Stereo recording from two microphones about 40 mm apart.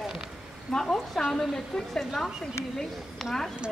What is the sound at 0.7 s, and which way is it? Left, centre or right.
A woman's voice, centre.